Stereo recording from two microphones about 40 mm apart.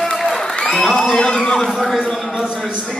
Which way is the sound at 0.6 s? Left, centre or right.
Centre.